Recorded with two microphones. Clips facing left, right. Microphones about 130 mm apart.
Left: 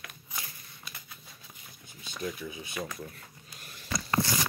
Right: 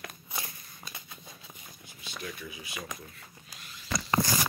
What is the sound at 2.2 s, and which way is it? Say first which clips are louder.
Speech: left 6 dB; 25° left (ahead or behind).